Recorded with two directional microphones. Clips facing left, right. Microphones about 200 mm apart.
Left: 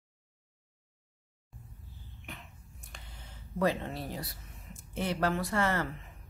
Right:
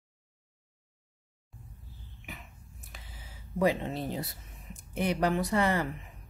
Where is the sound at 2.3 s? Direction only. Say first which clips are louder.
Right 1 dB; 5° right (ahead or behind).